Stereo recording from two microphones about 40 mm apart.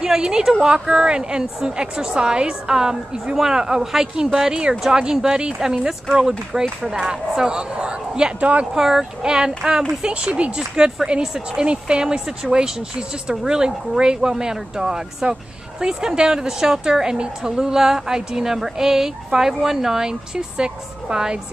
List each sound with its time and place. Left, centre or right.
0.0 s a woman's voice: centre
8.4 s speech: right
8.7 s a woman's voice: centre
9.2 s a woman's voice: centre